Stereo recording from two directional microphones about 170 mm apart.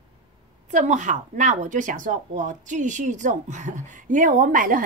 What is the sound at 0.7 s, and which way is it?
Speech, 45° right (ahead or behind).